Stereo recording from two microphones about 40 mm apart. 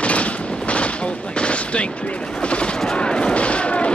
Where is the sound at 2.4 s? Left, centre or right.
Left.